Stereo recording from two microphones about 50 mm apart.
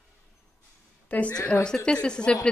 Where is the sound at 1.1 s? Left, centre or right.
Left.